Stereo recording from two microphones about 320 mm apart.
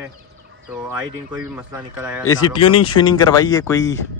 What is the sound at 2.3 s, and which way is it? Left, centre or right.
Speech, left.